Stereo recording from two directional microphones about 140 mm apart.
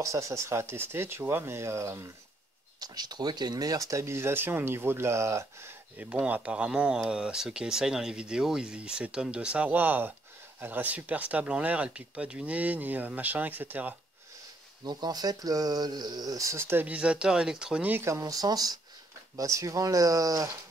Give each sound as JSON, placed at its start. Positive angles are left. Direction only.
{"t": 0.0, "sound": "speech", "side_deg": -20}
{"t": 14.9, "sound": "speech", "side_deg": -30}